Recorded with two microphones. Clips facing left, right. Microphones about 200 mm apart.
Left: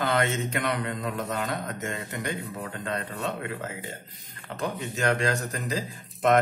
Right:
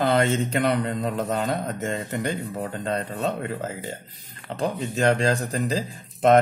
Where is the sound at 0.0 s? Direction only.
30° right (ahead or behind).